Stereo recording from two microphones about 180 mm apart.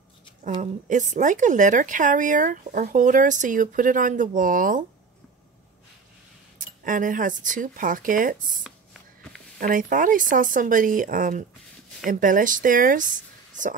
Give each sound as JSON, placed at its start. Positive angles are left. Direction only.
{"t": 0.6, "sound": "speech", "side_deg": -45}
{"t": 6.6, "sound": "speech", "side_deg": -50}